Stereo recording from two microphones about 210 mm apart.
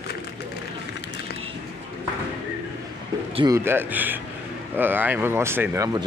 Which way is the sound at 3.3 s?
15° right (ahead or behind).